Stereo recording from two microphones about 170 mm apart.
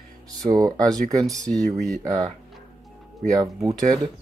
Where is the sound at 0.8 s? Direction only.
20° right (ahead or behind).